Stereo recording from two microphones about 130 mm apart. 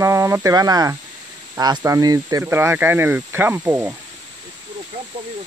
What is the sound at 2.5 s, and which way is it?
Speech, 15° right (ahead or behind).